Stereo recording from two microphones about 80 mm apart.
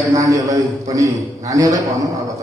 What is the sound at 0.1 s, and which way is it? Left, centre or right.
A man's voice, right.